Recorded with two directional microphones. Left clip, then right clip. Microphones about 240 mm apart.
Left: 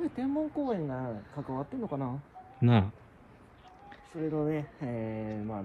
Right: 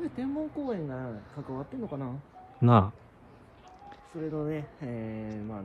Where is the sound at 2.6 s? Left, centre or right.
Centre.